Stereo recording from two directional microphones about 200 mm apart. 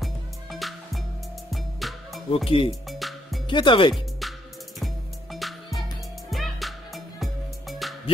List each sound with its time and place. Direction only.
0.0 s music: centre (ahead or behind)
2.3 s speech: 25° left (ahead or behind)
2.9 s music: centre (ahead or behind)
3.4 s speech: 25° left (ahead or behind)
4.2 s music: centre (ahead or behind)